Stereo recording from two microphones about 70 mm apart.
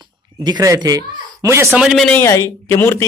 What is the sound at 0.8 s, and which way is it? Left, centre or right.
Speech, right.